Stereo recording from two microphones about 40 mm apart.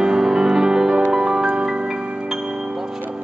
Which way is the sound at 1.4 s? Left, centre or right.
Right.